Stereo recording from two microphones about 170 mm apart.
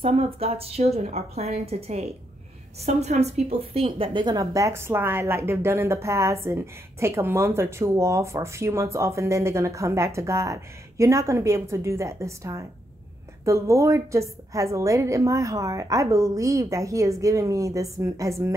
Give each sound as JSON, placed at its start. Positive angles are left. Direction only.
{"t": 0.0, "sound": "a woman's voice", "side_deg": -35}